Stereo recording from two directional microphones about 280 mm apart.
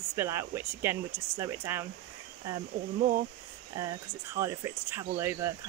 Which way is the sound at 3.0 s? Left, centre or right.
Right.